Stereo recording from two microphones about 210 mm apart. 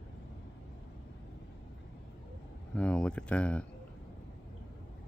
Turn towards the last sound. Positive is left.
turn(degrees=5)  # may be behind; listen again after turning